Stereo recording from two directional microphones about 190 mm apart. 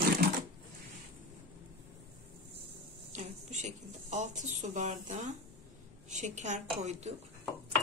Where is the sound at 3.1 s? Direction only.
40° right (ahead or behind).